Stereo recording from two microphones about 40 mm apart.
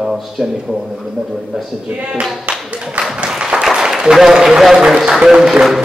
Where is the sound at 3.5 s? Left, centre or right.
Centre.